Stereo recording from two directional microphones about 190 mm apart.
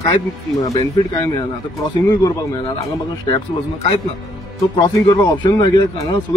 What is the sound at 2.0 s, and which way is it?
Speech, 25° left (ahead or behind).